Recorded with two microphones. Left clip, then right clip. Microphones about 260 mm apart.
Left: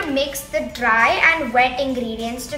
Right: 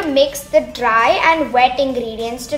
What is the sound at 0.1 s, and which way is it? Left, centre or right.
A woman's voice, right.